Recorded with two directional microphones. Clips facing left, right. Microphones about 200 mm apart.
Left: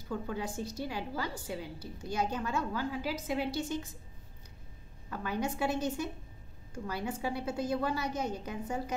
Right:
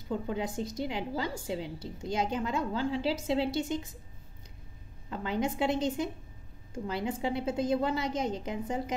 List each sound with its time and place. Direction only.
0.1 s a woman's voice: 20° right (ahead or behind)
5.1 s a woman's voice: 20° right (ahead or behind)